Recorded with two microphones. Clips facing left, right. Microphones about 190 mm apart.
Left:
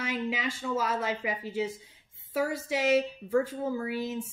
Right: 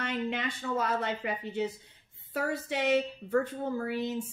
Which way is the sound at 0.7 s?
5° left (ahead or behind).